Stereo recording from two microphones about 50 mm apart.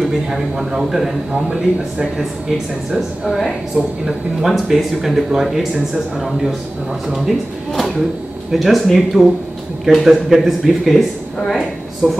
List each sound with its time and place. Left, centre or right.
0.0 s a man's voice: centre
1.3 s a man's voice: centre